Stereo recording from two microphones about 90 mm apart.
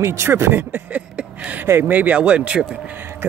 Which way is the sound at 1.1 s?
10° right (ahead or behind).